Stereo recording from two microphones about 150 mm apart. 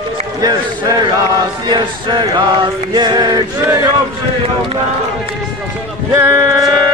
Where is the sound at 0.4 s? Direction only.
25° right (ahead or behind).